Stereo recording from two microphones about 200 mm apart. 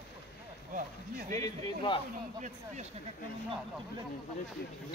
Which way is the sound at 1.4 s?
25° left (ahead or behind).